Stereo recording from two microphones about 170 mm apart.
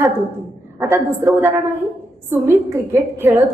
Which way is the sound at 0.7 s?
15° right (ahead or behind).